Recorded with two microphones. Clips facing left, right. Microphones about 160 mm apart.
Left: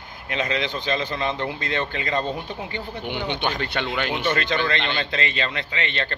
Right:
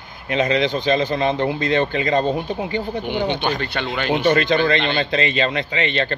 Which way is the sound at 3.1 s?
45° right (ahead or behind).